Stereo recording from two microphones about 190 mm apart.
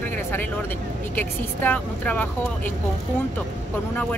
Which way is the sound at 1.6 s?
10° left (ahead or behind).